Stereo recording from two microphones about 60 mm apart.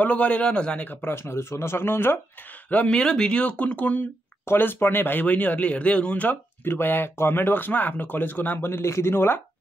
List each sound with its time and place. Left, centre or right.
0.0 s speech: left
1.0 s speech: left
2.9 s speech: centre
4.5 s speech: left